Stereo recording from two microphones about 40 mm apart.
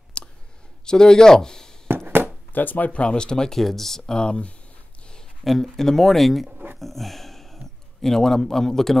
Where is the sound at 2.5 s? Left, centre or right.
Left.